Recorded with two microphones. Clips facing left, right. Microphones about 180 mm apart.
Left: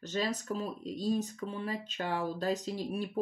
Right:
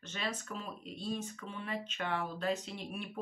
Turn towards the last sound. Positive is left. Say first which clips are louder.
# left 8 dB
turn(degrees=35)  # may be behind; listen again after turning